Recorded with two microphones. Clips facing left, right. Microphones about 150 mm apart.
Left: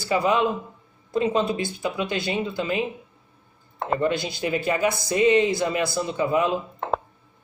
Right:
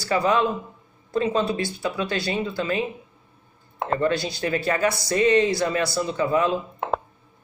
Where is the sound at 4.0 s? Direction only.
15° left (ahead or behind).